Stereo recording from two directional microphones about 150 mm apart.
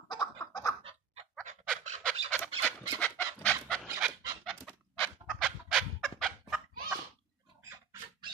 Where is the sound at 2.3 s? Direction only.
10° left (ahead or behind).